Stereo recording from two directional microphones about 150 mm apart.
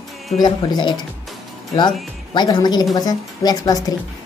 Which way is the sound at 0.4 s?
30° left (ahead or behind).